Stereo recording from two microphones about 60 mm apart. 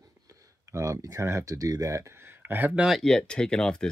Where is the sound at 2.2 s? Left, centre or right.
Right.